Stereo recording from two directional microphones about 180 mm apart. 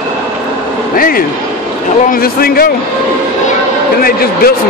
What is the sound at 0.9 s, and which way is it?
A man's voice, 55° left (ahead or behind).